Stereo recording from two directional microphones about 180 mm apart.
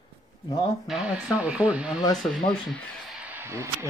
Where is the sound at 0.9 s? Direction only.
5° right (ahead or behind).